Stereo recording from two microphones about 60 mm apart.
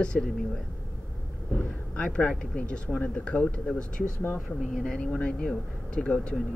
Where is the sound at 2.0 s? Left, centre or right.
Centre.